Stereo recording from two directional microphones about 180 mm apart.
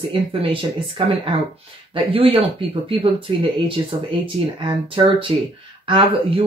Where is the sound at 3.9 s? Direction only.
30° right (ahead or behind).